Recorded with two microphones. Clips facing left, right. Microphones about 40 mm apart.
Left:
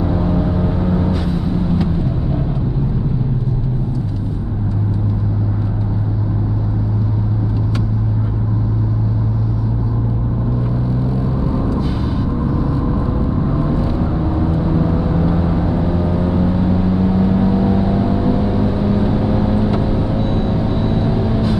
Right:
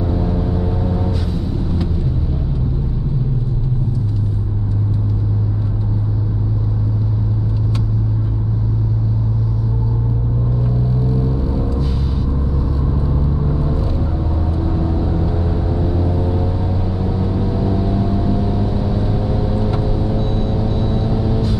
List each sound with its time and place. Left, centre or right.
0.2 s vehicle: left
13.5 s vehicle: left
20.2 s vehicle: centre